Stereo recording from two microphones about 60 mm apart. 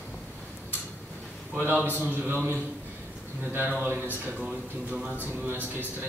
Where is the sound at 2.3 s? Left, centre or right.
Right.